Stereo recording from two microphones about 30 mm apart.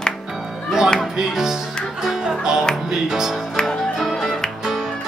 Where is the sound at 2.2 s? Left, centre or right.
Right.